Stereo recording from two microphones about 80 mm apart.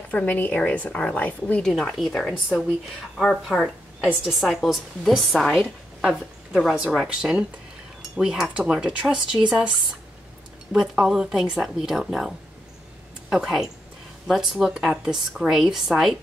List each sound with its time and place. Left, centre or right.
0.1 s a woman's voice: centre
1.6 s a woman's voice: centre